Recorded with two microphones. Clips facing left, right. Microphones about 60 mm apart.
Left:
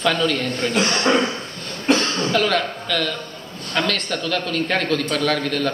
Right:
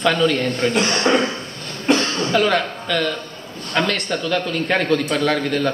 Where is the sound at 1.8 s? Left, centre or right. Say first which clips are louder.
Right 1 dB; centre.